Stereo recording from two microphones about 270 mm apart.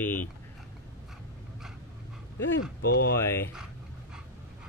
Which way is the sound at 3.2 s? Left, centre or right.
Centre.